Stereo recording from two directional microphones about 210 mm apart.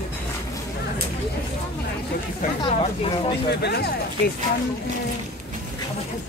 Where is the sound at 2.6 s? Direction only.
25° left (ahead or behind).